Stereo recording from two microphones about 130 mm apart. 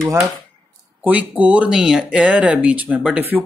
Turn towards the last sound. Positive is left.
turn(degrees=-10)  # may be behind; listen again after turning